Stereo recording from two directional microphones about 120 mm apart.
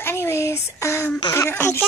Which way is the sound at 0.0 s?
20° left (ahead or behind).